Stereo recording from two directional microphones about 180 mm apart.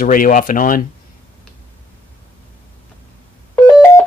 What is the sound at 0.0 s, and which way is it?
Speech, 50° left (ahead or behind).